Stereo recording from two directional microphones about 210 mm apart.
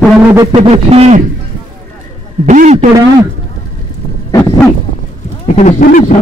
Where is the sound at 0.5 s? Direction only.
35° right (ahead or behind).